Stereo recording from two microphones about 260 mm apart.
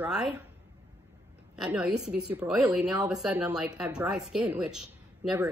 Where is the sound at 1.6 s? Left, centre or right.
Centre.